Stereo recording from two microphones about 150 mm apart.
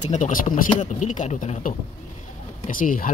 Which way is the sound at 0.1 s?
60° left (ahead or behind).